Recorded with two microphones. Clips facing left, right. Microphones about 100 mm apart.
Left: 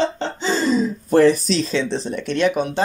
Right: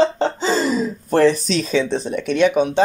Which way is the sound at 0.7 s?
5° left (ahead or behind).